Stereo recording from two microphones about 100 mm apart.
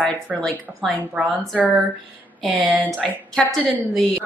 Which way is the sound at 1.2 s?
10° right (ahead or behind).